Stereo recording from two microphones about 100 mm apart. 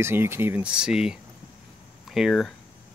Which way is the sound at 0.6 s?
10° right (ahead or behind).